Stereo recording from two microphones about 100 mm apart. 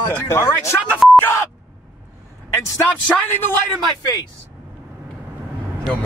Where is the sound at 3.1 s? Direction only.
20° left (ahead or behind).